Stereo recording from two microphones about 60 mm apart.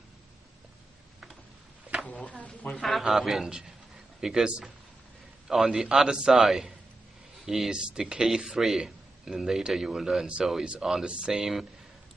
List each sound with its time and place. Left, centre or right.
2.0 s a sound: left
2.4 s a woman's voice: left
3.0 s a man's voice: centre